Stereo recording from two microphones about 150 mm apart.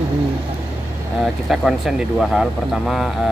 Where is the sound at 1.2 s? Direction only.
5° right (ahead or behind).